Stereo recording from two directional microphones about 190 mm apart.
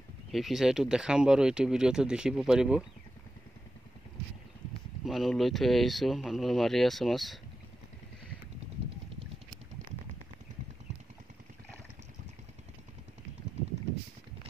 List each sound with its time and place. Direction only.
0.3 s speech: centre (ahead or behind)
5.0 s speech: centre (ahead or behind)